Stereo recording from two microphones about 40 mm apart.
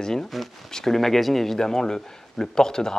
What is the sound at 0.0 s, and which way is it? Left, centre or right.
Speech, centre.